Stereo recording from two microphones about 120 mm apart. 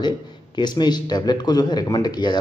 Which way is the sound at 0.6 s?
35° left (ahead or behind).